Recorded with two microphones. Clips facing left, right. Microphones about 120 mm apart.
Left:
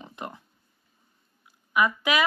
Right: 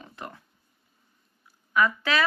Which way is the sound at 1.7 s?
15° left (ahead or behind).